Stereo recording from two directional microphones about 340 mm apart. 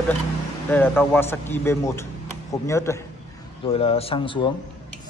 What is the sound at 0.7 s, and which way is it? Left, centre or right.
A man's voice, centre.